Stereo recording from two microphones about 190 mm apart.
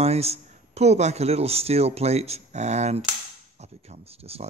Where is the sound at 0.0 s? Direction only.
35° right (ahead or behind).